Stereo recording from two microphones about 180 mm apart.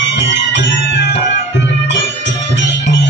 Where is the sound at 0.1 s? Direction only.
80° left.